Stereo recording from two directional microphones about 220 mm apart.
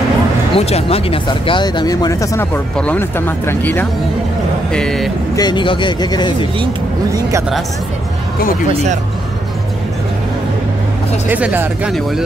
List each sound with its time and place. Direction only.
0.6 s speech: 30° left (ahead or behind); by 5.1 s centre (ahead or behind)
5.3 s speech: 20° left (ahead or behind)
11.2 s speech: 5° right (ahead or behind)